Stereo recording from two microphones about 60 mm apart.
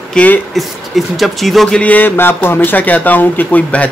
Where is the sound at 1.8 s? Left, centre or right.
Left.